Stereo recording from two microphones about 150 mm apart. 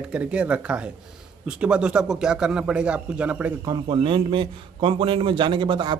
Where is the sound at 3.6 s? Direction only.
30° right (ahead or behind).